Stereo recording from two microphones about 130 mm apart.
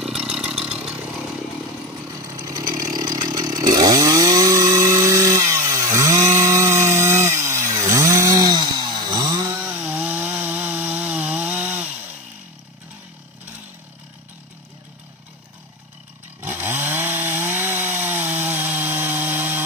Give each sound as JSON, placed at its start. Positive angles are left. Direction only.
{"t": 0.0, "sound": "vehicle", "side_deg": -5}
{"t": 2.2, "sound": "chainsaw", "side_deg": -25}
{"t": 5.1, "sound": "wood", "side_deg": -25}
{"t": 6.7, "sound": "chainsaw", "side_deg": -20}
{"t": 7.2, "sound": "wood", "side_deg": -20}
{"t": 8.1, "sound": "chainsaw", "side_deg": -25}
{"t": 9.6, "sound": "chainsaw", "side_deg": -15}
{"t": 16.3, "sound": "chainsaw", "side_deg": -15}